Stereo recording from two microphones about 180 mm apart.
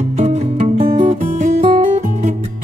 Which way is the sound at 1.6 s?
40° right (ahead or behind).